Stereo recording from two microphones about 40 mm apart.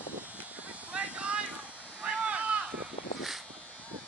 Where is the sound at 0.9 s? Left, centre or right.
Right.